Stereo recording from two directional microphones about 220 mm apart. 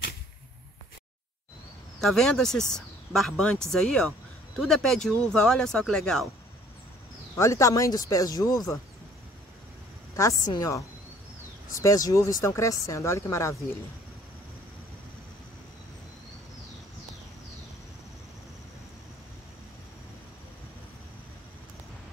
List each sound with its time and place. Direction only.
2.0 s speech: centre (ahead or behind)
7.3 s speech: 15° left (ahead or behind)
10.5 s speech: 15° left (ahead or behind)